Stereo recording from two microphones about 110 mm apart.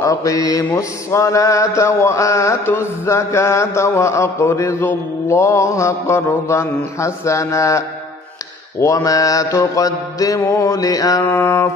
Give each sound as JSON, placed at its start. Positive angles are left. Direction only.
{"t": 0.0, "sound": "mantra", "side_deg": 30}
{"t": 11.2, "sound": "mantra", "side_deg": 20}